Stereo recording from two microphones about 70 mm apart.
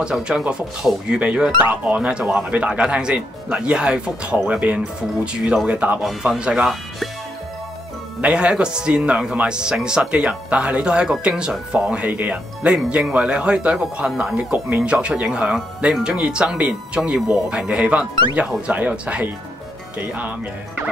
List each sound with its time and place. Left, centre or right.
0.0 s speech: centre
8.2 s speech: centre
12.7 s speech: centre